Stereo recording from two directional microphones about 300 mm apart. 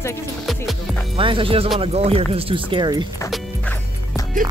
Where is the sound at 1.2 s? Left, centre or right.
Centre.